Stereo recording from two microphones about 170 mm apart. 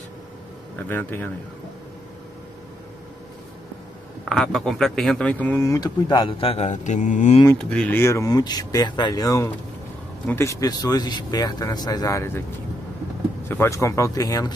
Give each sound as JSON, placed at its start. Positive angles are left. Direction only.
{"t": 0.8, "sound": "speech", "side_deg": 10}
{"t": 4.2, "sound": "speech", "side_deg": 0}
{"t": 7.5, "sound": "speech", "side_deg": 5}
{"t": 13.5, "sound": "speech", "side_deg": 15}